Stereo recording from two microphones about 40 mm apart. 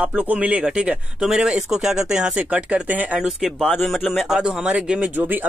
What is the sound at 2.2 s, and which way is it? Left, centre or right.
Speech, right.